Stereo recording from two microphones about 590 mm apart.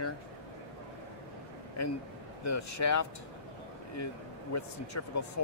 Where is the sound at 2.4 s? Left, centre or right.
Left.